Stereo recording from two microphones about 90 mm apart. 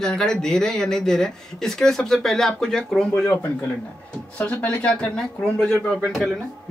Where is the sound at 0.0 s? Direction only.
5° left (ahead or behind).